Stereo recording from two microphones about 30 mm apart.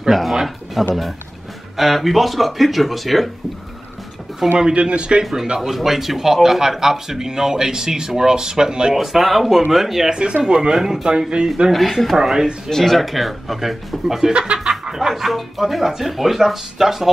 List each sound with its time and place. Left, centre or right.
0.1 s speech: centre
4.4 s speech: centre
4.7 s speech: right
5.2 s speech: centre
8.9 s speech: centre
10.1 s speech: right
10.7 s speech: centre
11.1 s speech: right
11.7 s speech: centre
12.2 s speech: centre
12.6 s speech: centre
13.0 s speech: centre
14.6 s speech: centre